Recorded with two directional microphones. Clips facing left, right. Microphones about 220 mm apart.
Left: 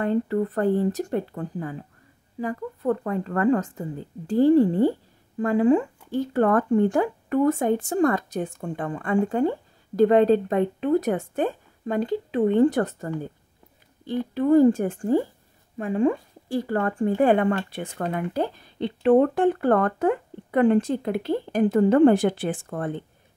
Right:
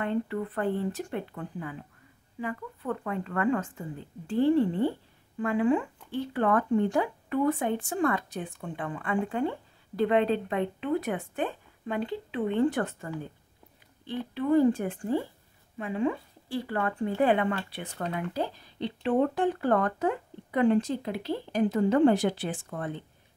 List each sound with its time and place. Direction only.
0.0 s speech: 40° left (ahead or behind)